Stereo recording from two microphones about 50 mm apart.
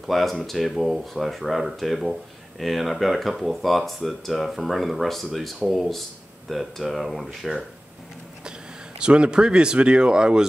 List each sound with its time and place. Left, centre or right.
0.0 s speech: centre
9.0 s speech: centre